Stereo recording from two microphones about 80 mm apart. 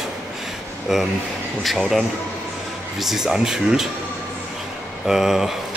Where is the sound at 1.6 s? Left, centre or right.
Centre.